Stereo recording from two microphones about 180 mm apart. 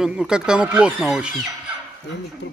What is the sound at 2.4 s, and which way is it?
Speech, 90° left.